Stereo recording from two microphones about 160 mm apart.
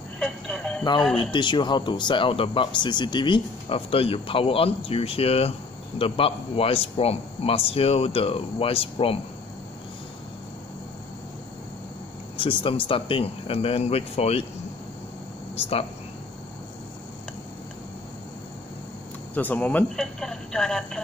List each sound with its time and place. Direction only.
0.2 s telephone: 5° left (ahead or behind)
1.1 s speech: 30° left (ahead or behind)
12.4 s speech: 35° left (ahead or behind)
19.3 s speech: 10° left (ahead or behind)